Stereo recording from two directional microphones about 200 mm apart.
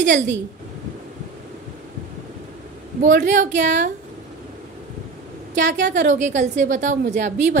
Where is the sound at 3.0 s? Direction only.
40° right (ahead or behind).